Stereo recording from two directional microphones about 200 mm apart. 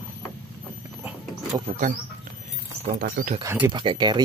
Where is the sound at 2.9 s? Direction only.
45° right (ahead or behind).